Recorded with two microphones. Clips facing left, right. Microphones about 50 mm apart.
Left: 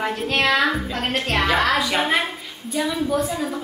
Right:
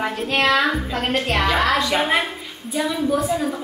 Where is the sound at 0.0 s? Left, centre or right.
Centre.